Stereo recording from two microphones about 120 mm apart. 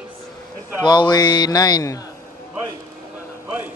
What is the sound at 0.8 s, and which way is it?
A man's voice, 35° left (ahead or behind).